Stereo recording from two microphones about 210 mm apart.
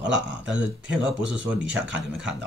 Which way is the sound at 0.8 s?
5° right (ahead or behind).